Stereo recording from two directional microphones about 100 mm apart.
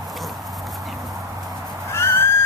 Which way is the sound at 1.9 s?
25° left (ahead or behind).